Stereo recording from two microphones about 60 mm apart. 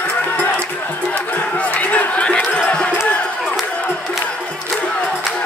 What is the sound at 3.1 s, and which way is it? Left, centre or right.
Crowd, left.